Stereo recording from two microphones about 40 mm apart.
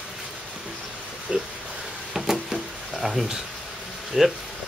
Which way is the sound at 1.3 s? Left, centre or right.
Centre.